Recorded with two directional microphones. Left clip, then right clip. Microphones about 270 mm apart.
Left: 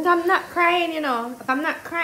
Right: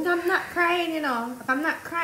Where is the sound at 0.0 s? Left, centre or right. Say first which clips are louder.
Left 5 dB; left.